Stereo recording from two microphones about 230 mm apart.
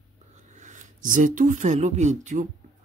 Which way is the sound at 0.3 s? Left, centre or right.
Right.